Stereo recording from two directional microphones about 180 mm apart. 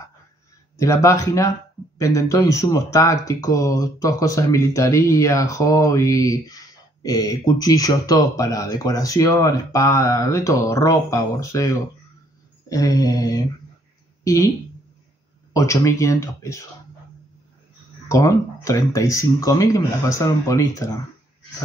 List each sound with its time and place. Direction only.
0.7 s speech: 15° left (ahead or behind)
12.6 s mantra: 20° left (ahead or behind)
14.2 s speech: 20° left (ahead or behind)
15.5 s speech: 15° left (ahead or behind)
18.0 s speech: 15° left (ahead or behind)